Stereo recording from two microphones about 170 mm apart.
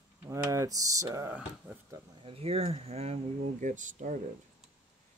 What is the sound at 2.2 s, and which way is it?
Speech, 35° right (ahead or behind).